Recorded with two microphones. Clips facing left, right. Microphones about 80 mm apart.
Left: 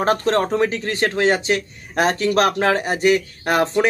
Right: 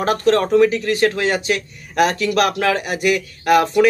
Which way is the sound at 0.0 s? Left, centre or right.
Left.